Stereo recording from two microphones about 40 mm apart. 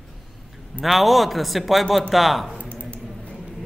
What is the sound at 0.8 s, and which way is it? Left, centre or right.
A man's voice, centre.